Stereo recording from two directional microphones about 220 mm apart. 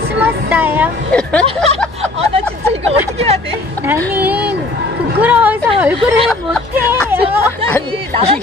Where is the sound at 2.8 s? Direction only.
30° right (ahead or behind).